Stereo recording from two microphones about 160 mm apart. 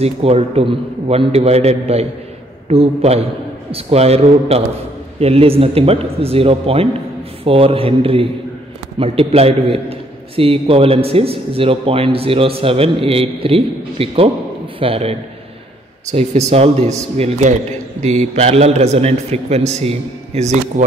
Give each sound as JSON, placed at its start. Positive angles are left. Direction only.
{"t": 0.0, "sound": "a man's voice", "side_deg": -40}